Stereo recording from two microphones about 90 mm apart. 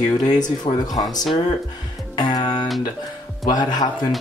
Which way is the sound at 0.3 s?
50° left (ahead or behind).